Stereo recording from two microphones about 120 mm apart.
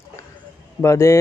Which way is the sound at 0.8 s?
25° left (ahead or behind).